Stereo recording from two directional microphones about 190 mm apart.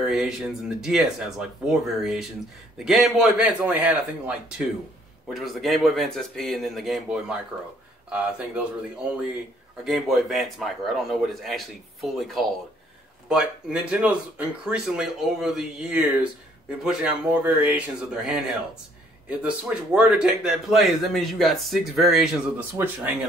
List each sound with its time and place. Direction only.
0.1 s speech: centre (ahead or behind)
9.8 s speech: centre (ahead or behind)